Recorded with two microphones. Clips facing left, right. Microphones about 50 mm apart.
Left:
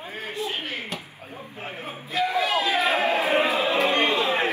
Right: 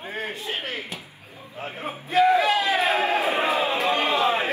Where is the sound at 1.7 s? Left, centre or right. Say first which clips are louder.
Right 6 dB; right.